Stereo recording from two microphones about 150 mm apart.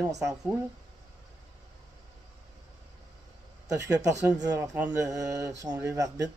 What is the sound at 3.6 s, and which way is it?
A man's voice, 25° right (ahead or behind).